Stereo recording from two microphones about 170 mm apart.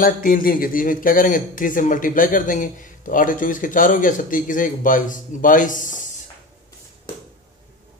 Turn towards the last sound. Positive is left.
turn(degrees=50)  # may be behind; listen again after turning